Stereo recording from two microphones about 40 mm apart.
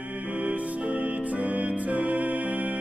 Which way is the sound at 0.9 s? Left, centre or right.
Right.